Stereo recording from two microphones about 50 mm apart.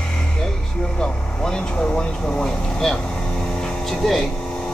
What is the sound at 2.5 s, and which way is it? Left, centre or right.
Vehicle, centre.